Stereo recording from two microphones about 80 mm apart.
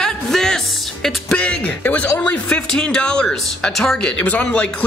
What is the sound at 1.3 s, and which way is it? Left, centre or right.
Speech, centre.